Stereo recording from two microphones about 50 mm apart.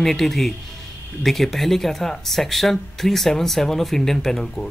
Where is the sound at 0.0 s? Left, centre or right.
Centre.